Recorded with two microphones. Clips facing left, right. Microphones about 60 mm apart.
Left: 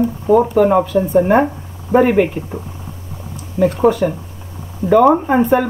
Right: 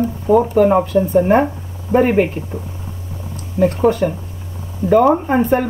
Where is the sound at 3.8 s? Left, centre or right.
Centre.